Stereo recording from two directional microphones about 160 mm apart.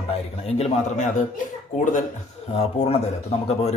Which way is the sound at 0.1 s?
40° left (ahead or behind).